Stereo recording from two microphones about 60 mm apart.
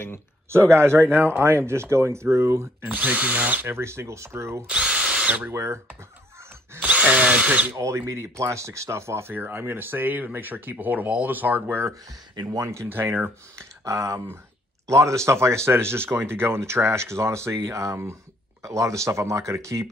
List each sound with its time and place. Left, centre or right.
0.5 s speech: right
2.8 s speech: right
3.7 s speech: right
4.6 s drill: centre
5.5 s speech: right
6.8 s drill: right
7.8 s speech: right
12.4 s speech: right
12.9 s speech: right